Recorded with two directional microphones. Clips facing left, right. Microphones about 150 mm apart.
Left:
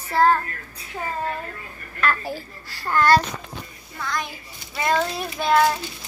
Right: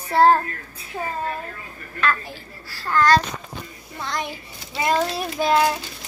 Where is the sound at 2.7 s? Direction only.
15° left (ahead or behind).